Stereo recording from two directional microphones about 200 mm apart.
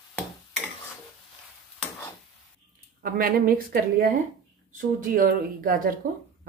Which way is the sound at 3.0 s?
45° right (ahead or behind).